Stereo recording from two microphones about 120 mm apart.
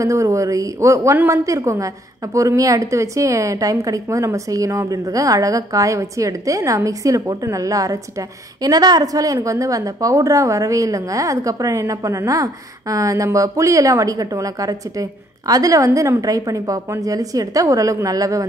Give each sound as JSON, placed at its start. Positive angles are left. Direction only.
{"t": 0.0, "sound": "a woman's voice", "side_deg": -25}